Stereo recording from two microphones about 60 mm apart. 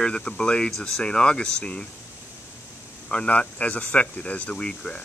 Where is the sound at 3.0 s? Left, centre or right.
Left.